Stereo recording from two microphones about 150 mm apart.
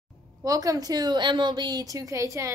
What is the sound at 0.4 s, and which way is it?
A woman's voice, 25° right (ahead or behind).